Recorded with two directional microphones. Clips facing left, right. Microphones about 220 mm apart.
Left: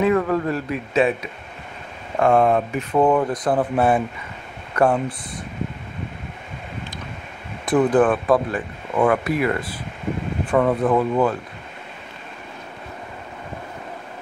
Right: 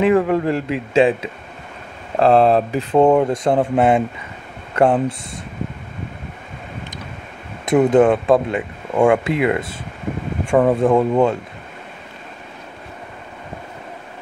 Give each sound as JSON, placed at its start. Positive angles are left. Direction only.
{"t": 0.0, "sound": "speech", "side_deg": -25}
{"t": 7.6, "sound": "speech", "side_deg": -25}